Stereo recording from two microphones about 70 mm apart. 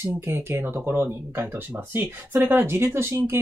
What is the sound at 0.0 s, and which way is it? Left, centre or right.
Speech, right.